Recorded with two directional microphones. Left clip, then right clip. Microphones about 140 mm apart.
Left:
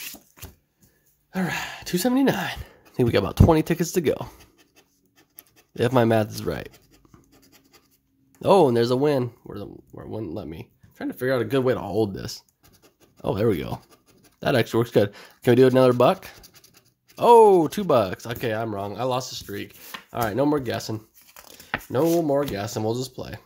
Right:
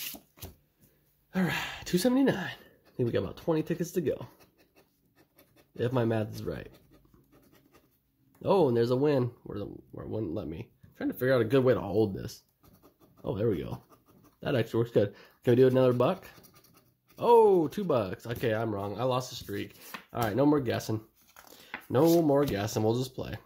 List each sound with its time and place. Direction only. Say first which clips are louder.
0.0 s a sound: left 3 dB; 20° left (ahead or behind)
1.3 s speech: left 4 dB; 5° left (ahead or behind); by 4.3 s 40° left (ahead or behind)
5.8 s a man's voice: left 10 dB; 35° left (ahead or behind)
8.4 s a man's voice: left 8 dB; 30° left (ahead or behind); by 23.4 s 5° left (ahead or behind)